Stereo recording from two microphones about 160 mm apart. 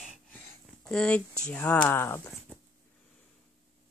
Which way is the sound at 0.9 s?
5° left (ahead or behind).